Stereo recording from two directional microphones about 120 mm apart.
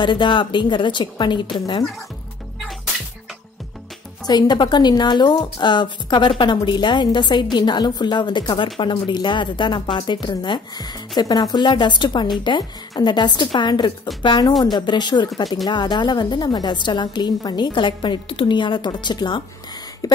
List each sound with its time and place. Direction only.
0.0 s a woman's voice: 40° left (ahead or behind)
4.3 s a woman's voice: 35° left (ahead or behind)